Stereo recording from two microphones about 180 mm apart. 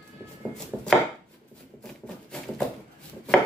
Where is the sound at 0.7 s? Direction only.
5° left (ahead or behind).